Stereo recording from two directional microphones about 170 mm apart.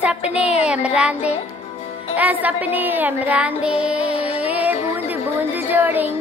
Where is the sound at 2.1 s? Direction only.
10° right (ahead or behind).